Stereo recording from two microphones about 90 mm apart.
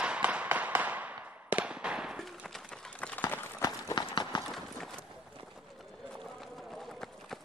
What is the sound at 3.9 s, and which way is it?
Clip-clop, 55° left (ahead or behind).